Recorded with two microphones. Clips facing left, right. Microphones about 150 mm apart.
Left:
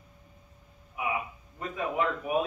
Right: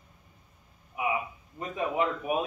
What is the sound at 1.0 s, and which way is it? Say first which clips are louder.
Speech: right 2 dB; 20° right (ahead or behind).